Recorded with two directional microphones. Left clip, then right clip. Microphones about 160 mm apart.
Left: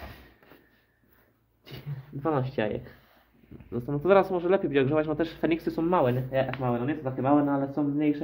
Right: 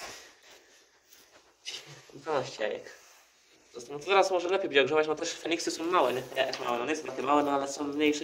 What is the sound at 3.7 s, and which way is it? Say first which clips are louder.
Speech: left 4 dB; 70° left (ahead or behind).